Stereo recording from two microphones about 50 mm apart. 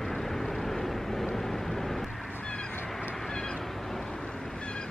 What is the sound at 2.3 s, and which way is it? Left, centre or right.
Cat, left.